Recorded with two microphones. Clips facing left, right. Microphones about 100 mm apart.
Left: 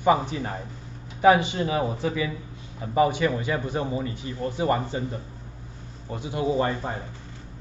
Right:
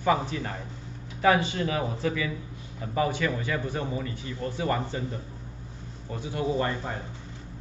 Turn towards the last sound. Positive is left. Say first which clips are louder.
# left 3 dB
turn(degrees=20)  # may be behind; listen again after turning